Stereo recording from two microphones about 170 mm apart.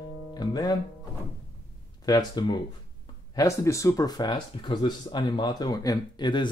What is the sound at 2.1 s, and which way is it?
Speech, 25° left (ahead or behind).